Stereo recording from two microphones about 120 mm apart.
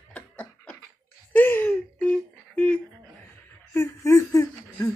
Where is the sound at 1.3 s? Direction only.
15° left (ahead or behind).